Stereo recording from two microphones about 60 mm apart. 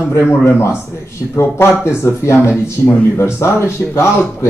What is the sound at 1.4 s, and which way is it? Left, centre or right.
Speech, left.